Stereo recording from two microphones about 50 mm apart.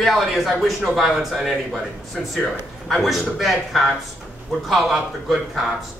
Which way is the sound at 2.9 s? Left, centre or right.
Centre.